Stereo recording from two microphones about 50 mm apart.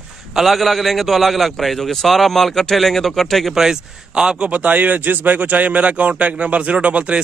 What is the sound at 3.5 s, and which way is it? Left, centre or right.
A man's voice, centre.